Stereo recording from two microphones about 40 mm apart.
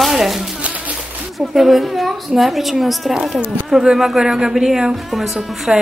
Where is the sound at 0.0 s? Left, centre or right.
Centre.